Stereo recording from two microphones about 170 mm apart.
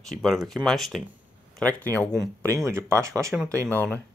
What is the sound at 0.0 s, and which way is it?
Speech, centre (ahead or behind).